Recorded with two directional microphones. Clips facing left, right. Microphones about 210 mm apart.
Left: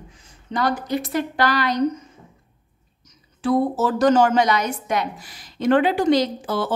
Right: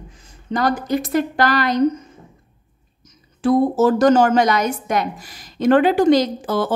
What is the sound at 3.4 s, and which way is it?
A woman's voice, 45° right (ahead or behind).